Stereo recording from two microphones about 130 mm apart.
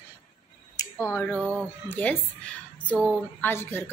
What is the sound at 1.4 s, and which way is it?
A woman's voice, 10° left (ahead or behind).